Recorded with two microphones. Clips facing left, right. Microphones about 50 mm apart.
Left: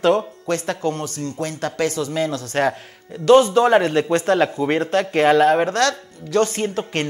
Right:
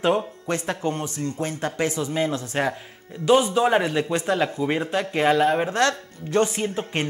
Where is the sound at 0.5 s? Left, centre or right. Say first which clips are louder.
Left 4 dB; right.